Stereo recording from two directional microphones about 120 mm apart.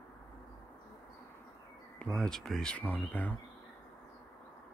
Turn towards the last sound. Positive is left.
turn(degrees=15)  # may be behind; listen again after turning